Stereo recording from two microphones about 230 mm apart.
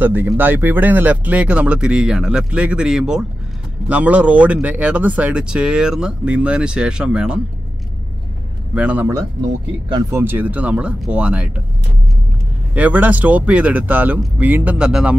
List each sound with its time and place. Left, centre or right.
0.0 s speech: centre
8.7 s speech: centre
12.7 s speech: centre